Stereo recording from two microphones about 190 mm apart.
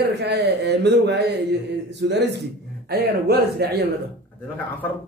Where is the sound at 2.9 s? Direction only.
60° right (ahead or behind).